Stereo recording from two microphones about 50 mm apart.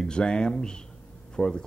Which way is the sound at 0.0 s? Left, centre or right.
Centre.